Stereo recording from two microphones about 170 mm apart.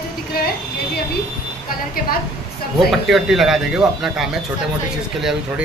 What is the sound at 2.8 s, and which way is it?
Speech, centre (ahead or behind).